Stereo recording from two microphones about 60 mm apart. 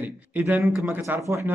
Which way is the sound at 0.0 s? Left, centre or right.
Right.